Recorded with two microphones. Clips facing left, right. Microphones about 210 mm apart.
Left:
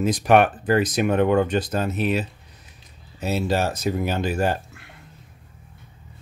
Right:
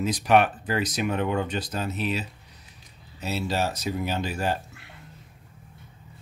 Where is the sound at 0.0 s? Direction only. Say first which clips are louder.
Left 4 dB; 50° left (ahead or behind).